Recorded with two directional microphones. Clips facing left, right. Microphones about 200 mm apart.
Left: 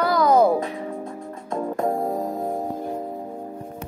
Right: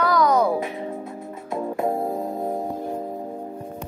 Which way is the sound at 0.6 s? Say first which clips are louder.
Even; 25° right (ahead or behind).